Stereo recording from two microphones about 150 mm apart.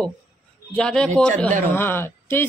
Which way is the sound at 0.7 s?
5° left (ahead or behind).